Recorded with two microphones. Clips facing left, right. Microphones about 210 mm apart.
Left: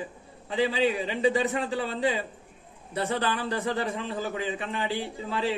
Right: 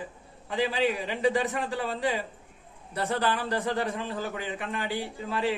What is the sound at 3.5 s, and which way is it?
A man's voice, 25° left (ahead or behind).